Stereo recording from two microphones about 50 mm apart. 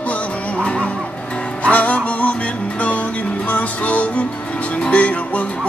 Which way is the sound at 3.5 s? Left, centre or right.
Left.